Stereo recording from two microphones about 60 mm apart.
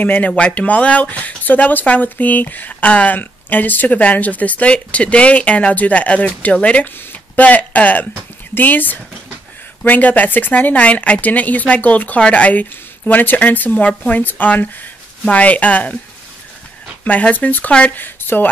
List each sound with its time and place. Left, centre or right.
0.0 s speech: left
17.0 s speech: left